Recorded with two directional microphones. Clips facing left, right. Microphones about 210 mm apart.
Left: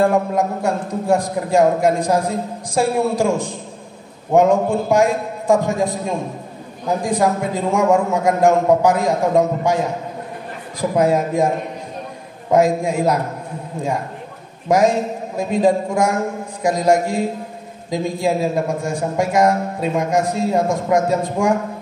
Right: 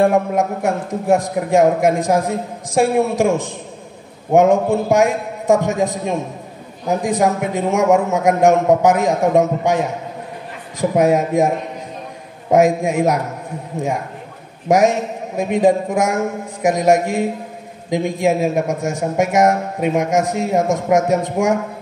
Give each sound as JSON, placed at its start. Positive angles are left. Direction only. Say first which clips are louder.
{"t": 0.0, "sound": "a man's voice", "louder": "right 1 dB", "side_deg": -20}
{"t": 6.9, "sound": "a man's voice", "louder": "right 1 dB", "side_deg": -20}
{"t": 15.3, "sound": "a man's voice", "louder": "right 2 dB", "side_deg": -20}